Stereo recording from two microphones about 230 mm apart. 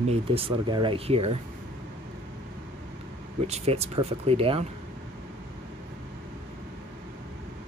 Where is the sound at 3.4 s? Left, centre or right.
Right.